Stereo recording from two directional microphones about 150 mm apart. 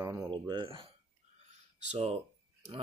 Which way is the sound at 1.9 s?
40° right (ahead or behind).